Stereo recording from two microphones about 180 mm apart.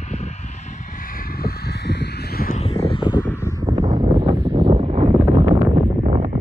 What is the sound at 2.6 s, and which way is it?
Vehicle, 30° left (ahead or behind).